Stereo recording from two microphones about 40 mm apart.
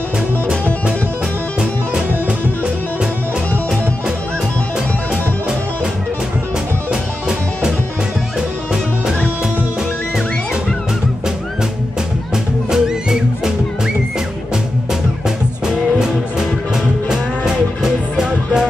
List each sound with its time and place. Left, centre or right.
6.9 s music: centre
12.7 s music: centre
16.0 s music: centre